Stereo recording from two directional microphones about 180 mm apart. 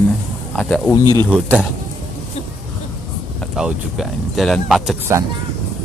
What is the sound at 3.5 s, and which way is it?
Speech, centre (ahead or behind).